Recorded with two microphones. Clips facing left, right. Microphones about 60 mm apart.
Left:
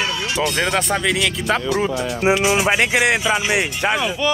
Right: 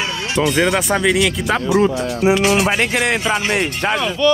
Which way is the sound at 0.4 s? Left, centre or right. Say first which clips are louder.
Right 5 dB; centre.